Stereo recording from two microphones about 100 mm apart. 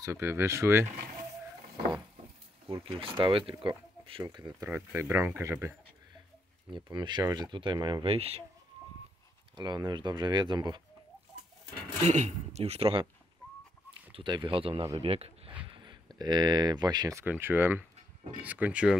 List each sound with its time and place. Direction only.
0.0 s speech: 30° right (ahead or behind)
2.8 s speech: 70° right (ahead or behind)
4.2 s speech: 45° right (ahead or behind)
4.6 s speech: 25° right (ahead or behind)
6.7 s speech: 50° right (ahead or behind)
8.1 s speech: 75° right (ahead or behind)
9.6 s speech: 45° right (ahead or behind)
12.5 s speech: 90° right
14.1 s speech: 50° right (ahead or behind)
15.0 s speech: 80° right
15.7 s speech: 50° right (ahead or behind)
17.1 s speech: 25° right (ahead or behind)